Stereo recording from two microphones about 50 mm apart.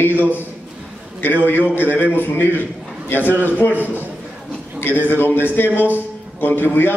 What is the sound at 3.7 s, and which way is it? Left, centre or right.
Speech, right.